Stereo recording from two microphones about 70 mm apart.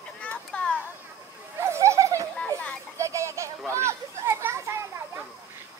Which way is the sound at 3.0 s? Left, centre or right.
Right.